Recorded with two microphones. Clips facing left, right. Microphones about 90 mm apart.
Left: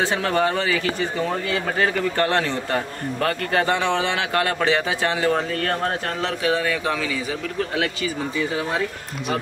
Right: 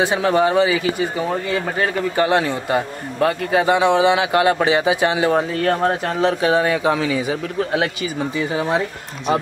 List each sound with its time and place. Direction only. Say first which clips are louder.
0.0 s a man's voice: right 4 dB; 15° right (ahead or behind)